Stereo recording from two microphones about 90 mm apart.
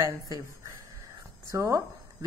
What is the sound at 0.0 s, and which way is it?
A woman's voice, 40° right (ahead or behind).